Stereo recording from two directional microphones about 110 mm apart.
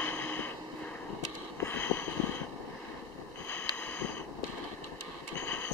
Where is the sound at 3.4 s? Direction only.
15° left (ahead or behind).